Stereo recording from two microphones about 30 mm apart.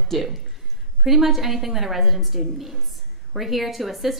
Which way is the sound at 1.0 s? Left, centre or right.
Centre.